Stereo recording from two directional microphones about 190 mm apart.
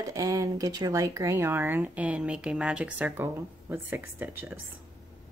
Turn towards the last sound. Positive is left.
turn(degrees=-10)  # may be behind; listen again after turning